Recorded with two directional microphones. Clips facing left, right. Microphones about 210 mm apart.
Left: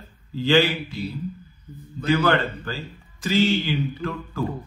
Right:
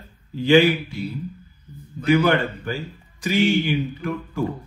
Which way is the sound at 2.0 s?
15° right (ahead or behind).